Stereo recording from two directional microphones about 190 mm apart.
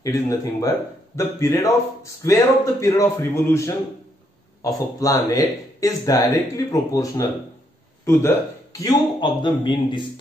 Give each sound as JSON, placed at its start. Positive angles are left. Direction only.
{"t": 0.0, "sound": "speech", "side_deg": 15}